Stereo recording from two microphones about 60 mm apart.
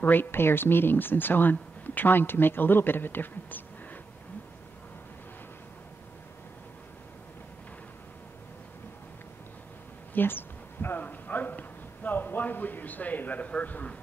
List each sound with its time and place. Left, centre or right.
0.0 s speech: left
10.1 s speech: left